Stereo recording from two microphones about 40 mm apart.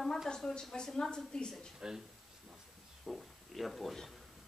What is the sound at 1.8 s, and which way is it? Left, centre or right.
Speech, centre.